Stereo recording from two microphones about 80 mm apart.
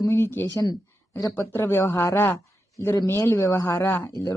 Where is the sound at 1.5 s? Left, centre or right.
Left.